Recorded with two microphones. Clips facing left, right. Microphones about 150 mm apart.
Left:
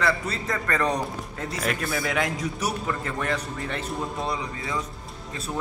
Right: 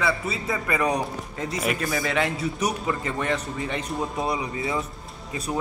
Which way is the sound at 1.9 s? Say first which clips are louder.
Right 1 dB; centre (ahead or behind).